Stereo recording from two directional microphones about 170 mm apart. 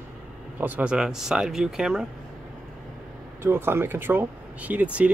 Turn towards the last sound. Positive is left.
turn(degrees=-10)  # may be behind; listen again after turning